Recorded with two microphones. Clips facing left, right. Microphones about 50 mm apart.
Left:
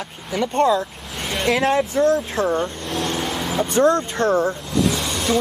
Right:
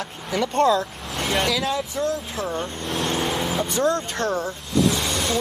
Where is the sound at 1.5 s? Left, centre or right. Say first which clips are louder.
Left 6 dB; left.